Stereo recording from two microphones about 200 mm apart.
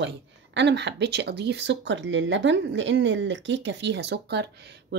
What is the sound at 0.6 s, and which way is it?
Speech, 60° right (ahead or behind).